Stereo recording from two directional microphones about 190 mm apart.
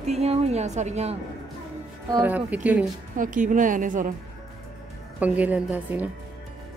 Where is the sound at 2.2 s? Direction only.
10° right (ahead or behind).